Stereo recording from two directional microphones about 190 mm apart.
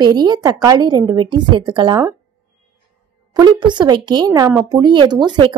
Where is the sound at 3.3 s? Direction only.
25° right (ahead or behind).